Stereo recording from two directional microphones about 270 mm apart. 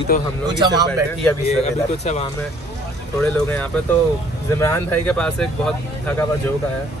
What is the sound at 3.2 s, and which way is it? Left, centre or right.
Speech, centre.